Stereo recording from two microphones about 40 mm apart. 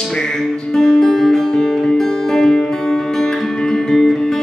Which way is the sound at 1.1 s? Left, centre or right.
Centre.